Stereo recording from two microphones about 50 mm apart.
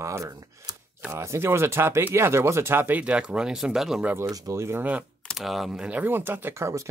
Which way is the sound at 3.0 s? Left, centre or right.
Right.